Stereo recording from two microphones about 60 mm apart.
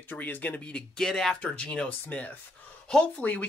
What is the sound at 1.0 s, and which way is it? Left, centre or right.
Speech, centre.